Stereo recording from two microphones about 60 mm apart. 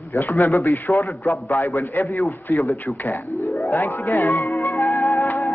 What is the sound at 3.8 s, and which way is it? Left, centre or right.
Music, left.